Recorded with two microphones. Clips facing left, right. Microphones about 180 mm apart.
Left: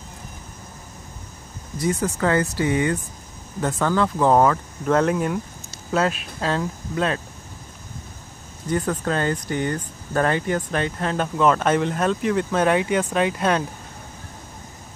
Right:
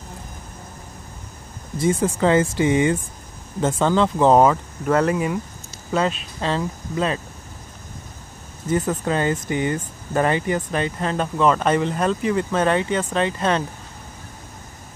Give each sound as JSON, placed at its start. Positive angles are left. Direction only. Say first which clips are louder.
{"t": 1.8, "sound": "speech", "louder": "right 3 dB", "side_deg": -25}
{"t": 4.8, "sound": "speech", "louder": "even", "side_deg": -5}
{"t": 8.6, "sound": "speech", "louder": "right 2 dB", "side_deg": 0}